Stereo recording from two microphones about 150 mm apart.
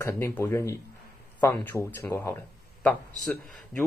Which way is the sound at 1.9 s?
15° left (ahead or behind).